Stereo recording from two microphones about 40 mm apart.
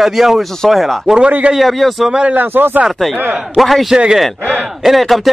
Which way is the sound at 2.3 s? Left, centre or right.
Right.